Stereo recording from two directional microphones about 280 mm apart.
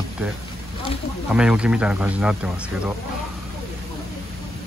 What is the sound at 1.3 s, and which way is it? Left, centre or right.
Speech, centre.